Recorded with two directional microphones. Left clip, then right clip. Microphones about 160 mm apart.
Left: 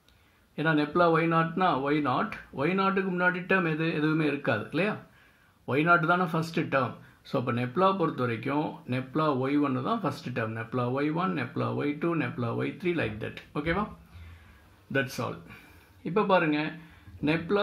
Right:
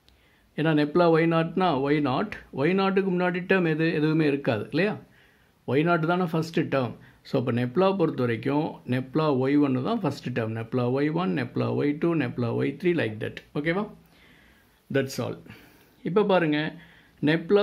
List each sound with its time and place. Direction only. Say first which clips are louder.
0.6 s speech: right 2 dB; 30° right (ahead or behind)
14.9 s speech: right 2 dB; 30° right (ahead or behind)